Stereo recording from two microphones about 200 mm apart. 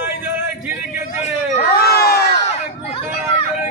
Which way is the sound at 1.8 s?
50° left (ahead or behind).